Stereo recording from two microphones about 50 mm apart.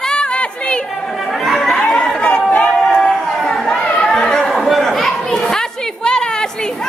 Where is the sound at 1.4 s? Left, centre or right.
Centre.